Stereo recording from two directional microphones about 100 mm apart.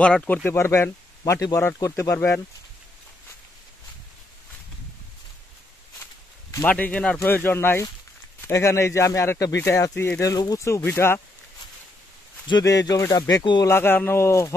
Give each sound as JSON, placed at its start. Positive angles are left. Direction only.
{"t": 0.0, "sound": "speech", "side_deg": 10}
{"t": 0.6, "sound": "speech", "side_deg": 25}
{"t": 2.1, "sound": "speech", "side_deg": 20}
{"t": 6.6, "sound": "speech", "side_deg": 15}
{"t": 10.3, "sound": "speech", "side_deg": 35}
{"t": 12.6, "sound": "speech", "side_deg": 35}
{"t": 13.4, "sound": "speech", "side_deg": 50}
{"t": 13.7, "sound": "speech", "side_deg": 20}